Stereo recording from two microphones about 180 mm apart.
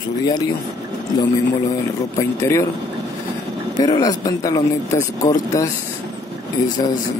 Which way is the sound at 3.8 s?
20° left (ahead or behind).